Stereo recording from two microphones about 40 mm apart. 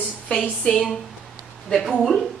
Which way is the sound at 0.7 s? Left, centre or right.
Left.